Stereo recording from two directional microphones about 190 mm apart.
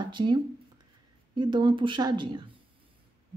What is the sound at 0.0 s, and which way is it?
Speech, 25° right (ahead or behind).